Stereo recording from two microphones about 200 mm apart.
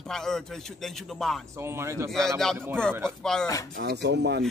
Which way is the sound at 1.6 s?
15° right (ahead or behind).